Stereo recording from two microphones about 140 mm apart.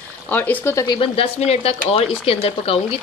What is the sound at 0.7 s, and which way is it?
Speech, 35° left (ahead or behind).